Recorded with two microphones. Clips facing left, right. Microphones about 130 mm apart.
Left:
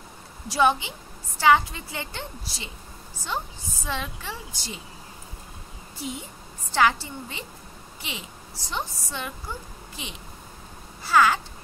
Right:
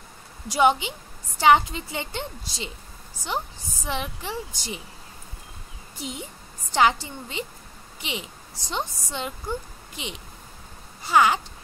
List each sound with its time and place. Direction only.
0.5 s a woman's voice: 20° right (ahead or behind)
3.8 s speech: 20° right (ahead or behind)
5.9 s a woman's voice: 20° right (ahead or behind)